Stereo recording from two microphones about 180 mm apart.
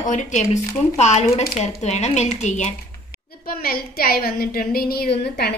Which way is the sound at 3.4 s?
60° left (ahead or behind).